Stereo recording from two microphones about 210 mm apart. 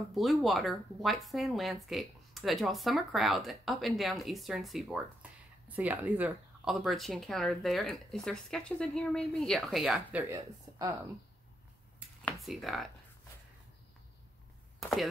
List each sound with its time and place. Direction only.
0.1 s speech: centre (ahead or behind)
10.3 s speech: 15° right (ahead or behind)
12.3 s speech: centre (ahead or behind)
14.8 s speech: centre (ahead or behind)